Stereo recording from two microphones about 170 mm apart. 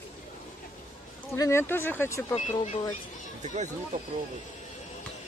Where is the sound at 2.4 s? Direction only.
40° left (ahead or behind).